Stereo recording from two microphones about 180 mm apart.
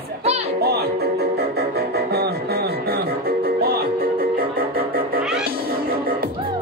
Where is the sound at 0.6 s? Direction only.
60° right (ahead or behind).